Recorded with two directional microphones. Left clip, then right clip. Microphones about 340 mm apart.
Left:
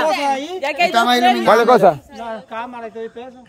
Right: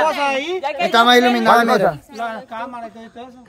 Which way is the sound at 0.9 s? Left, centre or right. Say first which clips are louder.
Right 4 dB; centre.